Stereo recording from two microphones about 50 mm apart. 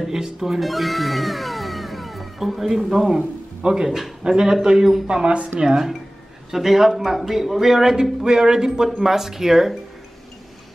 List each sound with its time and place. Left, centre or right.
0.0 s speech: centre
3.2 s speech: centre
5.0 s speech: right
5.6 s a man's voice: centre